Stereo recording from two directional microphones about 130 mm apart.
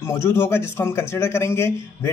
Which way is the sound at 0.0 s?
20° left (ahead or behind).